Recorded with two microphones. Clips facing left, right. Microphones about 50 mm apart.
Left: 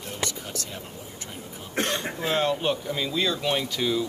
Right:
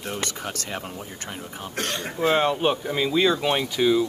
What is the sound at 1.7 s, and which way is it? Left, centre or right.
Speech, left.